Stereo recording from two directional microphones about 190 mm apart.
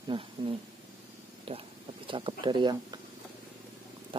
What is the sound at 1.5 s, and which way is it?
Speech, 30° right (ahead or behind).